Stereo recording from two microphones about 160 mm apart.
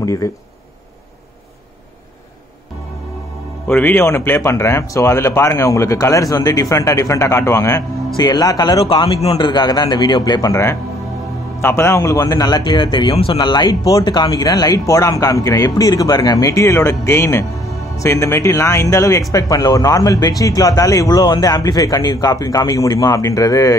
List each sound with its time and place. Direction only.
0.0 s speech: 20° left (ahead or behind)
3.6 s a man's voice: 10° left (ahead or behind)